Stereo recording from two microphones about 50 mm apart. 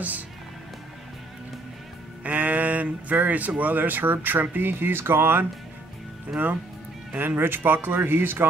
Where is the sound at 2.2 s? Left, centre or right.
Right.